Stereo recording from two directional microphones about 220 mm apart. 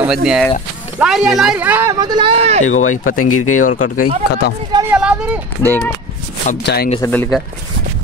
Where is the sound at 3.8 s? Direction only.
90° left.